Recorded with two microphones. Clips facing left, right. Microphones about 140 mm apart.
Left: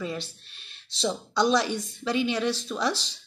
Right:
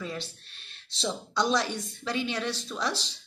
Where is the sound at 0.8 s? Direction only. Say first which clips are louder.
Left 4 dB; centre (ahead or behind).